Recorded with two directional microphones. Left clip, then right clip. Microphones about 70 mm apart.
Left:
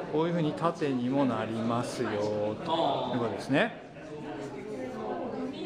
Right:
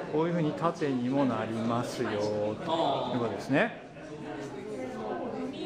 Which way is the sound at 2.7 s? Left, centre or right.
Right.